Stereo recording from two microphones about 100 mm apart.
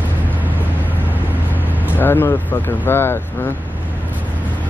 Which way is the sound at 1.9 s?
20° left (ahead or behind).